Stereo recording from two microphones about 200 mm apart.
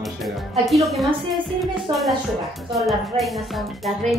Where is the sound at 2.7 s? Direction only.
Centre (ahead or behind).